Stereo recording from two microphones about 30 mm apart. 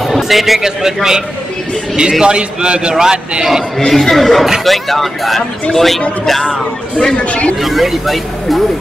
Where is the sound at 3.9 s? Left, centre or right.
Centre.